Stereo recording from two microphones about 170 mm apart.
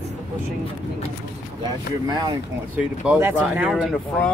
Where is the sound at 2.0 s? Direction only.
25° right (ahead or behind).